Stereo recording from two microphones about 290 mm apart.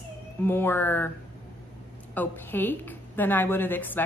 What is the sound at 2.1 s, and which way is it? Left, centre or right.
A woman's voice, centre.